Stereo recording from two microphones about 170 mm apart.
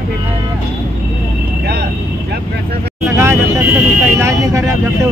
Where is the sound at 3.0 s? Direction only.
15° right (ahead or behind).